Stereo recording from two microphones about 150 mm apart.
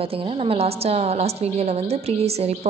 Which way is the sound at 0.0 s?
40° right (ahead or behind).